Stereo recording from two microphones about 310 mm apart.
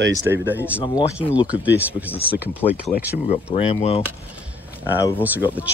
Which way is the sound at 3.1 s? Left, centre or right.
Left.